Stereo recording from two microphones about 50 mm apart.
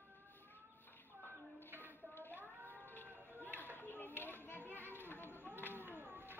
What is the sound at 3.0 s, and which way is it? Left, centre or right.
Run, right.